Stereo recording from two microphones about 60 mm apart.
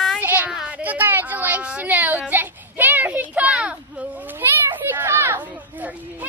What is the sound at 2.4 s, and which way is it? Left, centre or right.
Child singing, right.